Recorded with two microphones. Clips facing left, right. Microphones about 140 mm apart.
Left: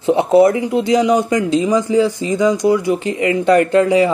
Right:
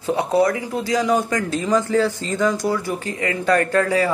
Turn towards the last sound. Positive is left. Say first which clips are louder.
# left 6 dB
turn(degrees=20)  # may be behind; listen again after turning